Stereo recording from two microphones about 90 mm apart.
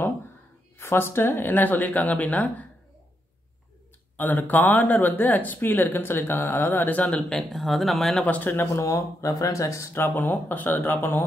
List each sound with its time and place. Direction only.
0.7 s speech: 25° left (ahead or behind)
4.2 s speech: 20° left (ahead or behind); by 8.3 s 5° left (ahead or behind)
8.3 s speech: 20° left (ahead or behind)
8.8 s speech: 40° left (ahead or behind)